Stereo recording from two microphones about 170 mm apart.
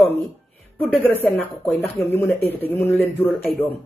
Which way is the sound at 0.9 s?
10° left (ahead or behind).